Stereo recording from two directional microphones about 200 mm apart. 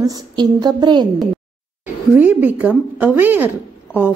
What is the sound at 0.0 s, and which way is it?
Speech, 20° right (ahead or behind).